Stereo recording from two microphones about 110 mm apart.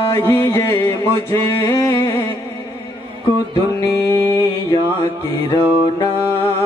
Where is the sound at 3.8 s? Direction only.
25° left (ahead or behind).